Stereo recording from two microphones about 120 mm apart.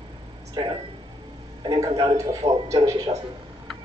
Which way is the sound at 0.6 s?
40° right (ahead or behind).